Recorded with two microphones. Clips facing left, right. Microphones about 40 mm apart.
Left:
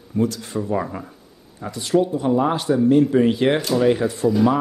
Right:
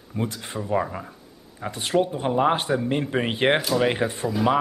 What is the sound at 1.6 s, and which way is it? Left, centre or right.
A man's voice, right.